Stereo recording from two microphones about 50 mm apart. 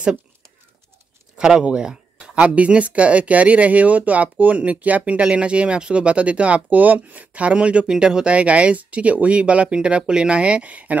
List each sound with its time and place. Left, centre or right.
1.3 s speech: centre